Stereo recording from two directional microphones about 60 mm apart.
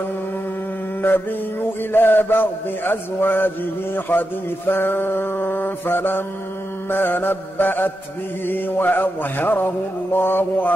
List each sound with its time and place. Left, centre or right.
1.9 s mantra: left